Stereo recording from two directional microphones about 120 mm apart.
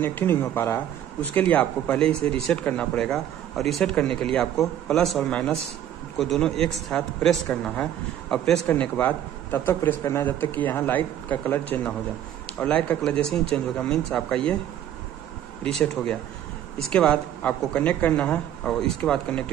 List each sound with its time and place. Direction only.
0.0 s a man's voice: 15° left (ahead or behind)
15.6 s a man's voice: 10° left (ahead or behind)